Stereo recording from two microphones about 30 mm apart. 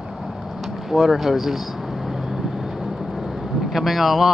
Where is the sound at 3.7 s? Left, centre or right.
Centre.